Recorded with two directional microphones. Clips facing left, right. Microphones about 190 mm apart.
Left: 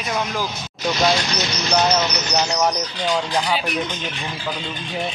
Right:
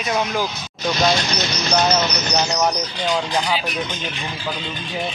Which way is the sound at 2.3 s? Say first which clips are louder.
Even; centre (ahead or behind).